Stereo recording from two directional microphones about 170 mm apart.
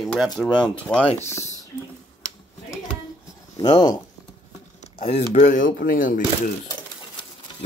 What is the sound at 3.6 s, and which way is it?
Speech, 20° left (ahead or behind).